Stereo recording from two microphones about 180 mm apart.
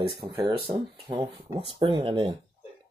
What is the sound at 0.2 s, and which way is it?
Speech, 25° right (ahead or behind).